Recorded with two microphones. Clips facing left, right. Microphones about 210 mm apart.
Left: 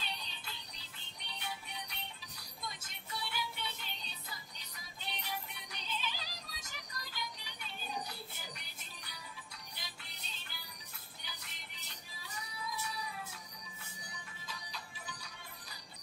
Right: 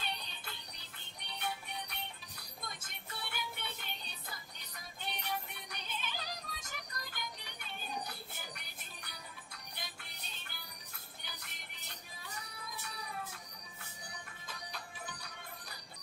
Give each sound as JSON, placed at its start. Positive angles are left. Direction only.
{"t": 1.4, "sound": "music", "side_deg": -50}
{"t": 12.2, "sound": "music", "side_deg": -55}
{"t": 14.5, "sound": "music", "side_deg": -55}